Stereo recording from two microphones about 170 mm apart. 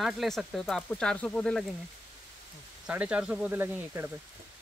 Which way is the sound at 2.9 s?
5° right (ahead or behind).